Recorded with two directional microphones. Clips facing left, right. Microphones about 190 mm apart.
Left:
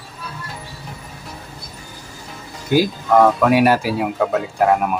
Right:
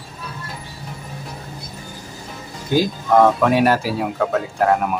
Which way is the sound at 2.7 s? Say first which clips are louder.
Left 1 dB; 5° left (ahead or behind).